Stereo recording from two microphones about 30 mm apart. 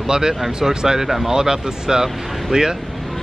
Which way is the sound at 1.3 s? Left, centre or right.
Right.